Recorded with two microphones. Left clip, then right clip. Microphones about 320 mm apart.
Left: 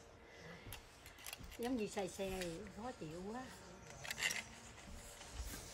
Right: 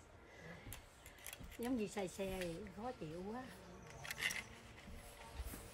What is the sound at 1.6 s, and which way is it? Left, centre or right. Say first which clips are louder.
Speech: left 1 dB; centre.